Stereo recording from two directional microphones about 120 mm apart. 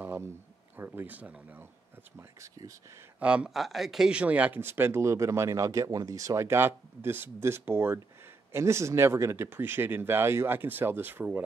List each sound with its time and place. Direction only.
0.0 s a sound: 20° right (ahead or behind)
0.7 s speech: 15° right (ahead or behind)
2.1 s speech: 25° right (ahead or behind)
3.2 s speech: 10° right (ahead or behind)